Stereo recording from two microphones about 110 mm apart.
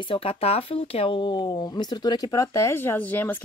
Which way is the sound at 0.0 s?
55° left (ahead or behind).